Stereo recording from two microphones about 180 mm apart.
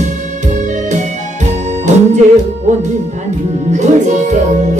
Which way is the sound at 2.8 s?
40° right (ahead or behind).